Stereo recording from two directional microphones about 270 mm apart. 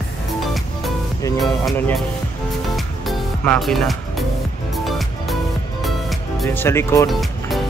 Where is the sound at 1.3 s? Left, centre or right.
Centre.